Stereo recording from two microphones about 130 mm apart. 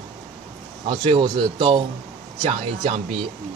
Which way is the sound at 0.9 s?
40° right (ahead or behind).